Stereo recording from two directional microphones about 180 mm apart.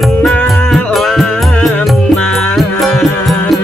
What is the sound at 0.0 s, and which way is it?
Music, 5° left (ahead or behind).